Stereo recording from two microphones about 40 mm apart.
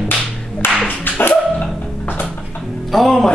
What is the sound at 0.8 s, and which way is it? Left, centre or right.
Clapping, left.